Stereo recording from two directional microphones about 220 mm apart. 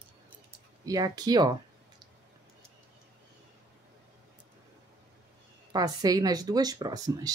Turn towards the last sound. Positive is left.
turn(degrees=-15)  # may be behind; listen again after turning